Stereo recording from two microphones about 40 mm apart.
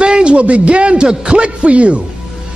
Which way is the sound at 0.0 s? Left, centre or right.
Right.